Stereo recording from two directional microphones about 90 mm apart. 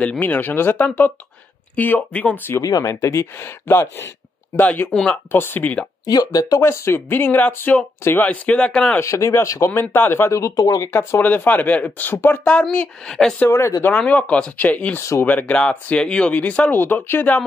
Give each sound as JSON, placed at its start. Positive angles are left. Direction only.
{"t": 0.0, "sound": "speech", "side_deg": 15}
{"t": 2.6, "sound": "speech", "side_deg": 35}
{"t": 4.9, "sound": "speech", "side_deg": 10}
{"t": 5.3, "sound": "speech", "side_deg": 25}
{"t": 6.0, "sound": "speech", "side_deg": 45}
{"t": 6.6, "sound": "speech", "side_deg": 30}
{"t": 9.0, "sound": "speech", "side_deg": 35}
{"t": 9.7, "sound": "speech", "side_deg": 25}
{"t": 10.9, "sound": "speech", "side_deg": 25}
{"t": 13.5, "sound": "speech", "side_deg": 30}
{"t": 13.9, "sound": "speech", "side_deg": 15}
{"t": 15.0, "sound": "speech", "side_deg": 30}
{"t": 15.2, "sound": "speech", "side_deg": 15}